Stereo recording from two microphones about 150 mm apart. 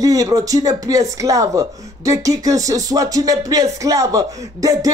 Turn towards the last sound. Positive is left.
turn(degrees=-25)  # may be behind; listen again after turning